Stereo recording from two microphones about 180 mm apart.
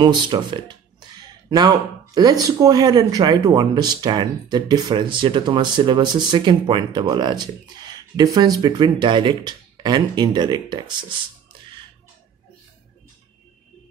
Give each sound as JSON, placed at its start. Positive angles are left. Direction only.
{"t": 0.0, "sound": "speech", "side_deg": -25}